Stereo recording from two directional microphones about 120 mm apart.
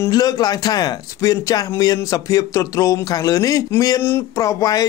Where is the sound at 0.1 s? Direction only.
30° left (ahead or behind).